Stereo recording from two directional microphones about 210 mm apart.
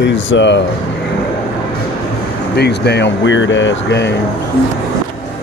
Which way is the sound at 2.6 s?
55° left (ahead or behind).